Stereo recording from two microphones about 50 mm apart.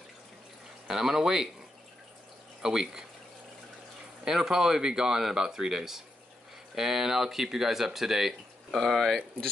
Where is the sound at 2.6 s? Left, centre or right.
Centre.